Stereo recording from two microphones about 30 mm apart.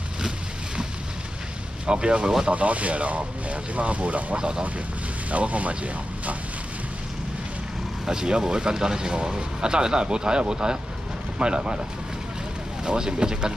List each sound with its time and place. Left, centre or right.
1.9 s speech: right
2.5 s speech: right
4.4 s speech: right
5.3 s speech: right
8.1 s speech: right
12.8 s speech: right